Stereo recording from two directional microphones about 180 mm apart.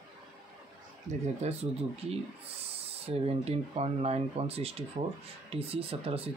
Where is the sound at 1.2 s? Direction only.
35° right (ahead or behind).